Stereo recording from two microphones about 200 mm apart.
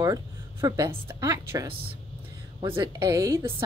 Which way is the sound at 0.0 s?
15° right (ahead or behind).